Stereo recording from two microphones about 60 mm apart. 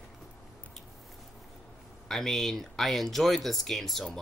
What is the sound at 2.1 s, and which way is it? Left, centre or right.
Speech, centre.